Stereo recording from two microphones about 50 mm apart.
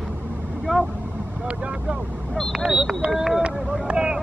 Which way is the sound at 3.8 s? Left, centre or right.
Centre.